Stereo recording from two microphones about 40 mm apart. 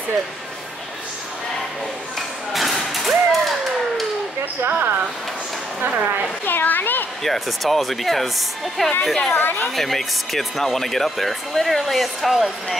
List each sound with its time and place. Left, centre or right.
2.1 s a sound: centre
4.6 s speech: right
6.4 s a sound: left
7.2 s a woman's voice: centre
9.4 s a woman's voice: left
9.8 s speech: centre